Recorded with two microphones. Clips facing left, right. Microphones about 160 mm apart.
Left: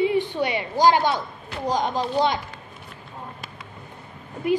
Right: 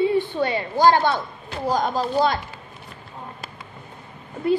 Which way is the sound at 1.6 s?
5° right (ahead or behind).